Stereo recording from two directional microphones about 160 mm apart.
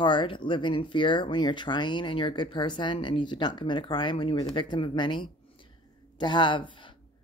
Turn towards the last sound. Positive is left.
turn(degrees=30)  # may be behind; listen again after turning